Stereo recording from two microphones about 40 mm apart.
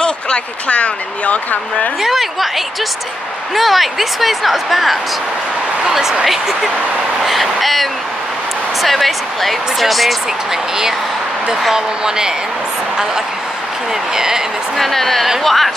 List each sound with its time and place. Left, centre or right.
0.7 s speech: left
2.0 s speech: centre
3.5 s a woman's voice: centre
11.7 s speech: centre
14.1 s speech: centre
14.8 s a woman's voice: centre